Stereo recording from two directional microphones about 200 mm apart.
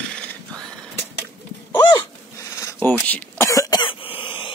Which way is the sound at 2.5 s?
10° left (ahead or behind).